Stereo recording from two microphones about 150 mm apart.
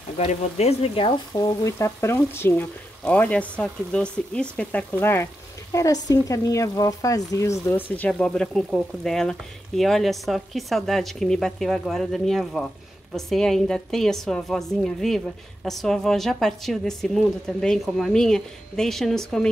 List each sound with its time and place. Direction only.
0.2 s speech: 45° left (ahead or behind); by 19.5 s 5° left (ahead or behind)